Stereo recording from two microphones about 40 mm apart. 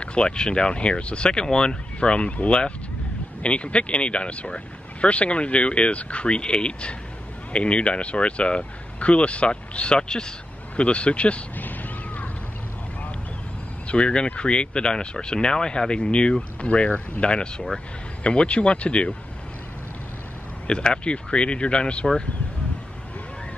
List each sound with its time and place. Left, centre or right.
0.0 s speech: left
11.5 s a sound: left
13.8 s speech: left
20.6 s speech: left